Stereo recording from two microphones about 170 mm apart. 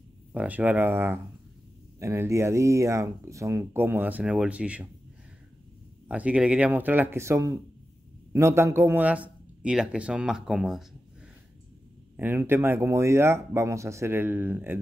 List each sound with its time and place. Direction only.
0.3 s speech: 10° right (ahead or behind)
6.0 s speech: 5° right (ahead or behind)
12.2 s speech: 10° right (ahead or behind)